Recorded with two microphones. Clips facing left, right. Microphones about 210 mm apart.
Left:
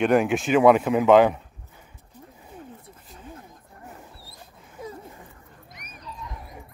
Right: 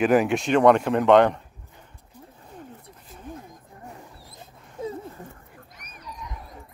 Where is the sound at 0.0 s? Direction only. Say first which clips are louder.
Even; centre (ahead or behind).